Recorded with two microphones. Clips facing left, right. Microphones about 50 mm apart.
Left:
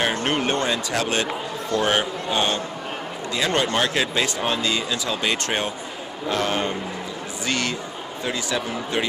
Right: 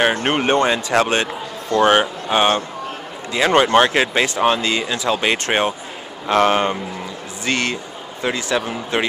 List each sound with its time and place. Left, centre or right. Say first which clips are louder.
0.0 s speech: right 5 dB; right
1.8 s speech: right 8 dB; right
3.3 s speech: right 8 dB; right
6.2 s a man's voice: right 8 dB; right
7.4 s speech: right 4 dB; right
8.2 s a man's voice: right 5 dB; right